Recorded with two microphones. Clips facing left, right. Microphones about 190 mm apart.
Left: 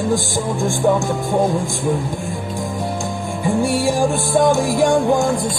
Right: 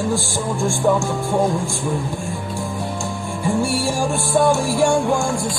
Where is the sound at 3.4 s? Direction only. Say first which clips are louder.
Left 3 dB; 15° left (ahead or behind).